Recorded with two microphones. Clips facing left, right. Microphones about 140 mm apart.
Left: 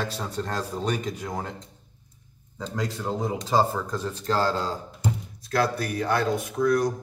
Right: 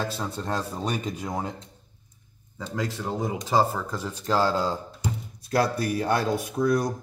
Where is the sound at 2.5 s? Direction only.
5° right (ahead or behind).